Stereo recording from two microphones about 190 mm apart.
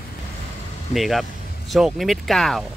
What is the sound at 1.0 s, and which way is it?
Speech, centre (ahead or behind).